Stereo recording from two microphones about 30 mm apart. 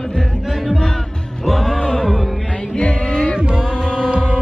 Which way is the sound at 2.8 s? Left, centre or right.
Left.